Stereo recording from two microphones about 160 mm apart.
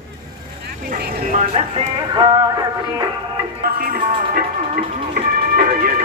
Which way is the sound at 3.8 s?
65° right (ahead or behind).